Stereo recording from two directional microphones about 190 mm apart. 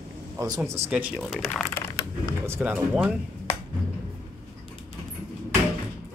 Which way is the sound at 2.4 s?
10° right (ahead or behind).